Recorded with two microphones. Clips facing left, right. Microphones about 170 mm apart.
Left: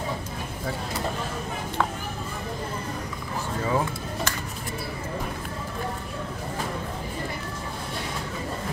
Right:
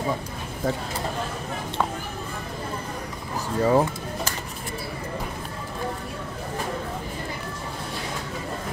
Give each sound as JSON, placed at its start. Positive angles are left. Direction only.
{"t": 3.6, "sound": "speech", "side_deg": -40}